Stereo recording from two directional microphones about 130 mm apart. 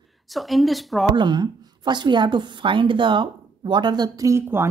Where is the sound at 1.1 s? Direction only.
35° right (ahead or behind).